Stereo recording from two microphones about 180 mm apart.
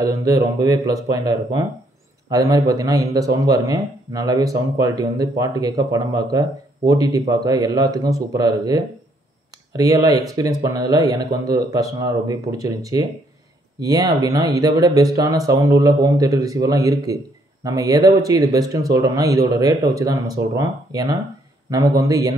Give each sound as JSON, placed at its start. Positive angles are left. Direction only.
{"t": 0.0, "sound": "speech", "side_deg": -20}